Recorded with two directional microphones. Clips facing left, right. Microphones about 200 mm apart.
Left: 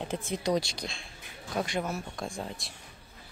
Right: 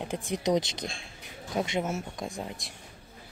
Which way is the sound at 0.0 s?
15° right (ahead or behind).